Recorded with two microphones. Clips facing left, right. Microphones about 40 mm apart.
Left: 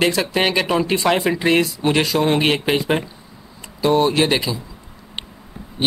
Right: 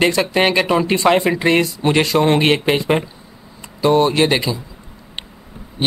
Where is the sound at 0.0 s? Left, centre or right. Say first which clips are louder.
Right 3 dB; centre.